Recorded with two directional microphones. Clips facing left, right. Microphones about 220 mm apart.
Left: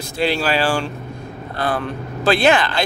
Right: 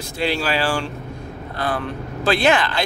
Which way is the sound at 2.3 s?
35° left (ahead or behind).